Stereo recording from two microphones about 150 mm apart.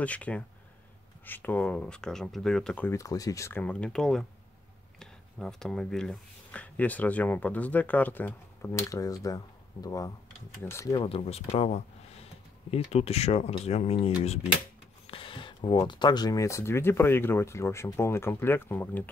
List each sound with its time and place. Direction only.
0.0 s speech: 10° left (ahead or behind)
2.9 s speech: 20° left (ahead or behind)
3.6 s speech: 5° left (ahead or behind)
11.1 s speech: 40° left (ahead or behind)
15.0 s a sound: 35° left (ahead or behind)
15.7 s speech: 25° left (ahead or behind)